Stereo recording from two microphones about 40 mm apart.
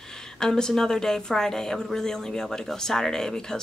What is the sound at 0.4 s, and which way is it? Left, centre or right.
A woman's voice, centre.